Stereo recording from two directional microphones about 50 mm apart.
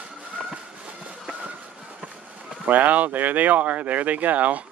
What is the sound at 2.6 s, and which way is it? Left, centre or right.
Speech, right.